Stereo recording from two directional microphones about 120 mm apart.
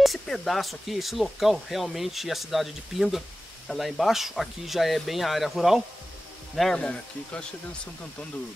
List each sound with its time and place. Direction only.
0.0 s speech: centre (ahead or behind)